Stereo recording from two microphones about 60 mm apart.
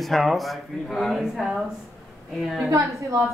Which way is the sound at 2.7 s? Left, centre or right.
Right.